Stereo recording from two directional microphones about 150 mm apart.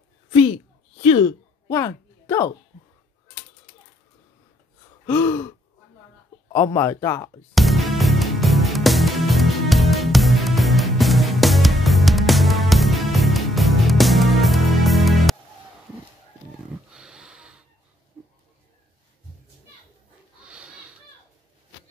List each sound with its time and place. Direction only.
0.3 s a sound: 35° left (ahead or behind)
1.2 s throat clearing: 20° left (ahead or behind)
5.0 s a man's voice: 15° left (ahead or behind)
6.5 s a man's voice: 15° left (ahead or behind)
7.5 s music: centre (ahead or behind)
16.9 s sniff: 5° right (ahead or behind)
20.4 s a sound: 5° right (ahead or behind)